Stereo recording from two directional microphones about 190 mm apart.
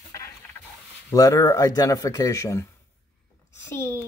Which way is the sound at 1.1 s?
15° left (ahead or behind).